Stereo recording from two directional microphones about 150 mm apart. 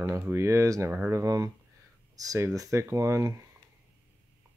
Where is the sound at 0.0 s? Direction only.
20° right (ahead or behind).